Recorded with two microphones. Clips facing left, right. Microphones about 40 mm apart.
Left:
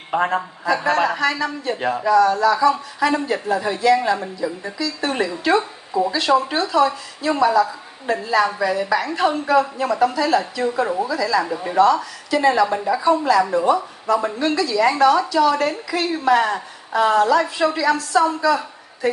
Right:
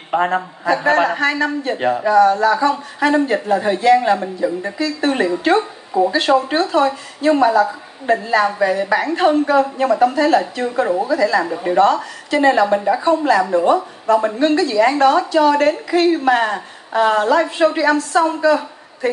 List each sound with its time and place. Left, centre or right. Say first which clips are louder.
0.1 s a woman's voice: right 3 dB; right